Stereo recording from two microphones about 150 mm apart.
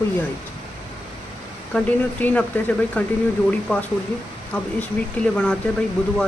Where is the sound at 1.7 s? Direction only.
10° left (ahead or behind).